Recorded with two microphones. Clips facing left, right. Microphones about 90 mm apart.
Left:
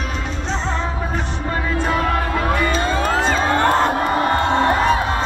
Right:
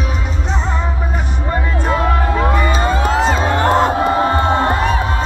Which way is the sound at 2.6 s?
10° right (ahead or behind).